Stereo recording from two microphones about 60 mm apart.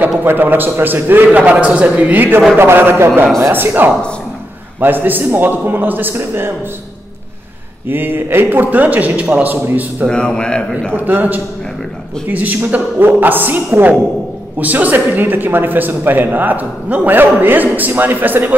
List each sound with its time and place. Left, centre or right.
0.2 s a man's voice: right
7.9 s a man's voice: right
10.0 s a man's voice: centre
10.9 s a man's voice: right